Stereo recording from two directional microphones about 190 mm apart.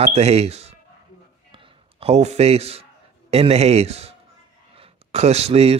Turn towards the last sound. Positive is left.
turn(degrees=-30)  # may be behind; listen again after turning